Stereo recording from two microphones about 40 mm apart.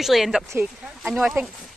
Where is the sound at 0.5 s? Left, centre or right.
Right.